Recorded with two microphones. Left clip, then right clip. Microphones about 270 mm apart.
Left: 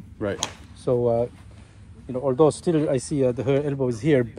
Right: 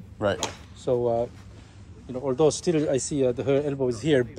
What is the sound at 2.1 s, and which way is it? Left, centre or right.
Speech, centre.